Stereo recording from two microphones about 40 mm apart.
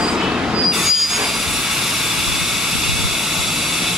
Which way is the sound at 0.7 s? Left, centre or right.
Centre.